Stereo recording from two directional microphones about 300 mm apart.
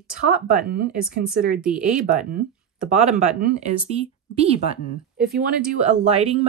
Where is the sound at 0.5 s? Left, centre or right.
Right.